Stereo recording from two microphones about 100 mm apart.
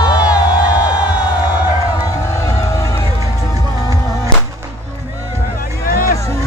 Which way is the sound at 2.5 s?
35° left (ahead or behind).